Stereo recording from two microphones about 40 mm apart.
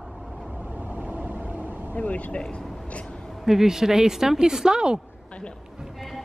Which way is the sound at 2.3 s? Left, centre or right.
Left.